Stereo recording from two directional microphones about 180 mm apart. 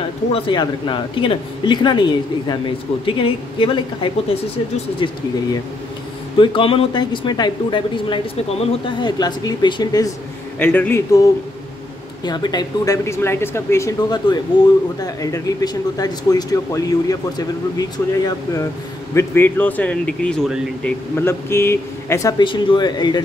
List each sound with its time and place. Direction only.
0.3 s a woman's voice: 25° left (ahead or behind)
6.3 s a woman's voice: 30° left (ahead or behind)
10.6 s speech: 10° left (ahead or behind)
12.3 s a woman's voice: 25° left (ahead or behind); by 20.9 s centre (ahead or behind)
21.2 s speech: 15° left (ahead or behind)
22.4 s a woman's voice: 25° left (ahead or behind)